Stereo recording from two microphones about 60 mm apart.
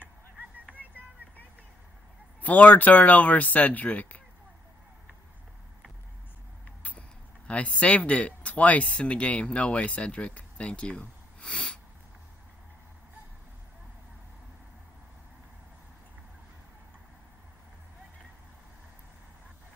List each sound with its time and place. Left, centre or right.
2.4 s speech: left
6.8 s speech: left